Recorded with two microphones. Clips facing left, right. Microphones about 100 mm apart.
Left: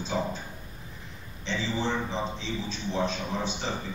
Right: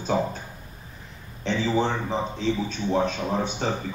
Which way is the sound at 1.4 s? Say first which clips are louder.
Right 7 dB; 55° right (ahead or behind).